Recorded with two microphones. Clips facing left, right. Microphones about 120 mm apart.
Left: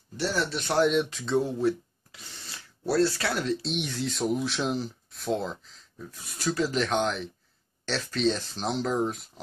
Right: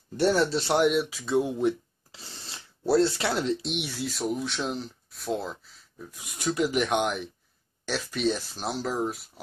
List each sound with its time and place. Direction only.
0.2 s speech: 50° right (ahead or behind)
0.5 s speech: 35° right (ahead or behind)
0.7 s speech: 5° right (ahead or behind)
2.1 s speech: 30° right (ahead or behind)
3.7 s speech: 10° right (ahead or behind)